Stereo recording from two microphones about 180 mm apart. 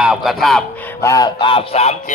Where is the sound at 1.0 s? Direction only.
20° left (ahead or behind); by 2.0 s 35° left (ahead or behind).